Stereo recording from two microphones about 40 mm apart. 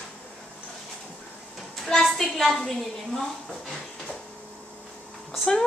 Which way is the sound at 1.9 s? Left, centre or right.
Centre.